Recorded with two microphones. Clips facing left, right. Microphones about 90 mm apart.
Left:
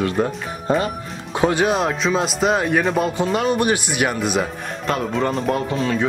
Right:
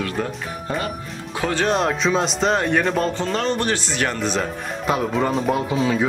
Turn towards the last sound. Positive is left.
turn(degrees=-5)  # may be behind; listen again after turning